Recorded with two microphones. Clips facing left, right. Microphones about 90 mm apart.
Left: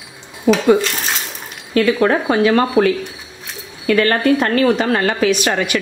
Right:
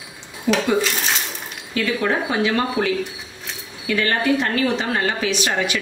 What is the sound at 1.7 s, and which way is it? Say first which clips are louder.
A woman's voice: left 7 dB; 60° left (ahead or behind).